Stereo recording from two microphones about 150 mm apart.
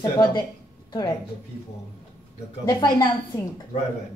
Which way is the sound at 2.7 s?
25° left (ahead or behind).